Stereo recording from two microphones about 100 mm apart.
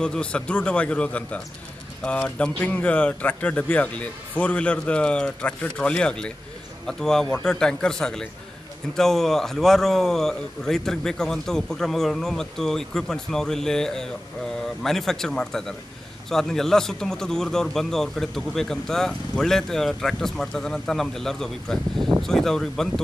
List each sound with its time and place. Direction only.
0.0 s a man's voice: 10° left (ahead or behind)